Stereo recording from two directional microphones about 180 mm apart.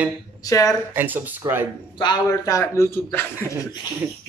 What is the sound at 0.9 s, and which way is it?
Speech, 10° right (ahead or behind).